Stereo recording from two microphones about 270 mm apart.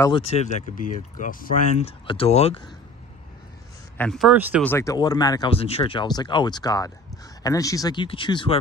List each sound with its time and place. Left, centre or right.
0.0 s speech: centre
4.0 s speech: centre
4.6 s speech: centre